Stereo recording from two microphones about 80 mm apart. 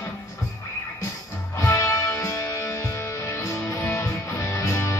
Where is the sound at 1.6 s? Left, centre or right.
Left.